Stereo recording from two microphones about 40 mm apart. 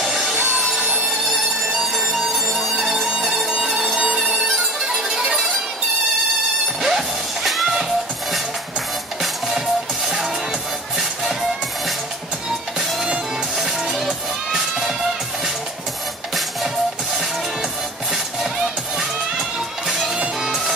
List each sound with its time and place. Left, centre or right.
0.0 s a sound: centre
0.6 s music: centre
2.1 s music: centre
3.9 s music: centre
4.2 s music: centre
6.8 s music: centre
13.6 s music: centre